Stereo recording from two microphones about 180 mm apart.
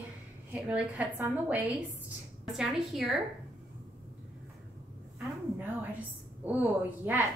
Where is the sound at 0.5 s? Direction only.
10° right (ahead or behind).